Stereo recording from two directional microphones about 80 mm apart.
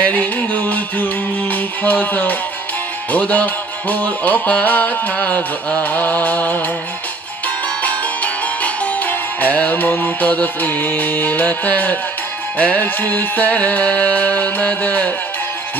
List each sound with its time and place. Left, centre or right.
0.0 s music: centre